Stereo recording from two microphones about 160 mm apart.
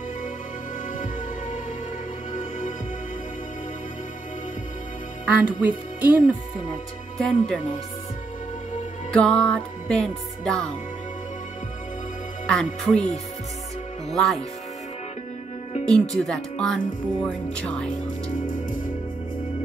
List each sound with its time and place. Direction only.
5.2 s speech: 10° right (ahead or behind)
7.2 s speech: 5° left (ahead or behind)
9.1 s speech: 5° left (ahead or behind)
12.4 s speech: 5° left (ahead or behind)
14.1 s speech: centre (ahead or behind)
15.9 s speech: 5° left (ahead or behind)
18.0 s speech: 55° left (ahead or behind)